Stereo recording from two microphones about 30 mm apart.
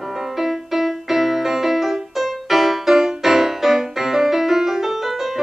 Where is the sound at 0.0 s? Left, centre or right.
Centre.